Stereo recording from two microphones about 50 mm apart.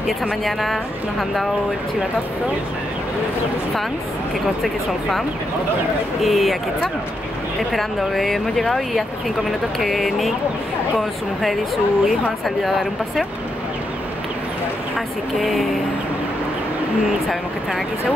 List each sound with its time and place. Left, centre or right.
0.5 s speech: centre
6.2 s speech: centre
15.0 s speech: centre